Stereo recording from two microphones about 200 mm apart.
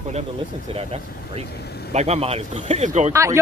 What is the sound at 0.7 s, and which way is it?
Speech, 30° right (ahead or behind).